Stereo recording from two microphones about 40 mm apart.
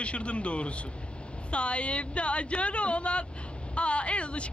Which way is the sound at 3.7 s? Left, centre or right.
Left.